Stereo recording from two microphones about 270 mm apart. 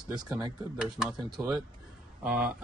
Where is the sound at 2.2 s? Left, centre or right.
Centre.